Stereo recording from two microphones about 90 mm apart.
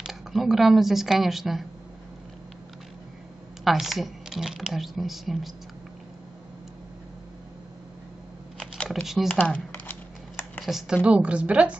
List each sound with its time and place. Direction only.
0.0 s speech: centre (ahead or behind)
3.6 s speech: centre (ahead or behind)
8.5 s a sound: 10° left (ahead or behind)
9.0 s speech: 5° right (ahead or behind)
9.3 s speech: 20° left (ahead or behind)
9.7 s a sound: 25° left (ahead or behind)
10.6 s a woman's voice: 5° right (ahead or behind)